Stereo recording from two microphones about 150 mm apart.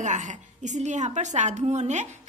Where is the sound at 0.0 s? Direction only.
55° right (ahead or behind).